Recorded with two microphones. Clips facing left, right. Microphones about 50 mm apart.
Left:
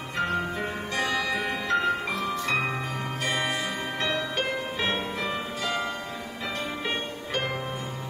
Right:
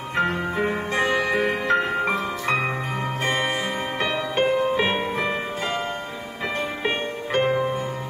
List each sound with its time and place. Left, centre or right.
0.1 s music: right
6.8 s music: right